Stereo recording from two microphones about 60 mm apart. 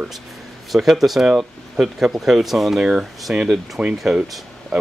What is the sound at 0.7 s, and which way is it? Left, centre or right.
Speech, centre.